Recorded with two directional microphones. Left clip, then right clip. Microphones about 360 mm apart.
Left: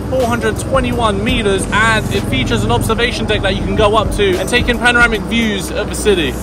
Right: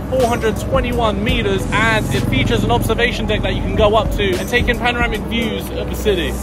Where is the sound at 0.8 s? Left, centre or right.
Centre.